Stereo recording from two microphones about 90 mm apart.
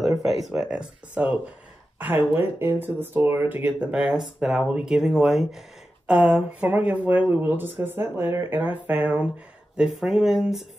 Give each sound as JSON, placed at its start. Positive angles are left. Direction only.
{"t": 0.2, "sound": "speech", "side_deg": -5}
{"t": 9.8, "sound": "speech", "side_deg": -5}